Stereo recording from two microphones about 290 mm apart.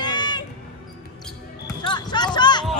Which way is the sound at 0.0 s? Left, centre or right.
Centre.